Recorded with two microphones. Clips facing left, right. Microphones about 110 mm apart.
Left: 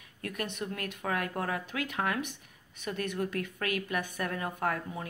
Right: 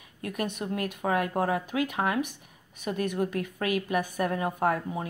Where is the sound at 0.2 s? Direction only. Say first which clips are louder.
Right 4 dB; 15° right (ahead or behind).